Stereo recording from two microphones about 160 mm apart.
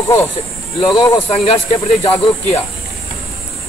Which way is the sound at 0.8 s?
30° left (ahead or behind).